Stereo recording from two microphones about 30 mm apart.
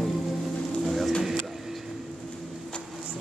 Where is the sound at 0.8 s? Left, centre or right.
Centre.